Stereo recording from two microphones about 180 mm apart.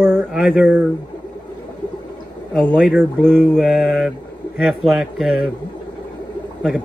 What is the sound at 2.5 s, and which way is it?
A man's voice, centre (ahead or behind).